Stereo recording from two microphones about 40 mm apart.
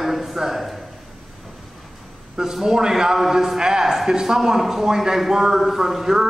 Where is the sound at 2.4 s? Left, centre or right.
Centre.